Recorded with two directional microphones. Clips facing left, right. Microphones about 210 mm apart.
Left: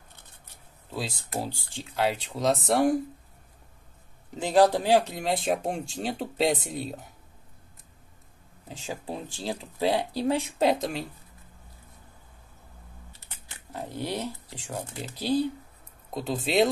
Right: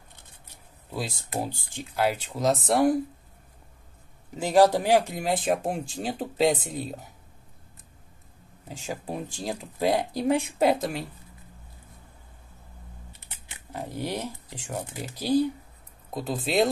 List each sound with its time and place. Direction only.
0.9 s speech: 15° right (ahead or behind)
2.0 s speech: centre (ahead or behind)
4.4 s speech: 10° right (ahead or behind)
8.6 s speech: 10° right (ahead or behind)
13.3 s shuffling cards: 10° right (ahead or behind)
16.1 s speech: centre (ahead or behind)